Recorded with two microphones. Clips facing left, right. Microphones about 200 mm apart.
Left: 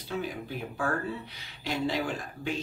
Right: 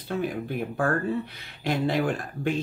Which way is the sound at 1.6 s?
55° right (ahead or behind).